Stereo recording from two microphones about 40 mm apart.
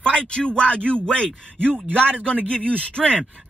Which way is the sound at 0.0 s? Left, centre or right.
Left.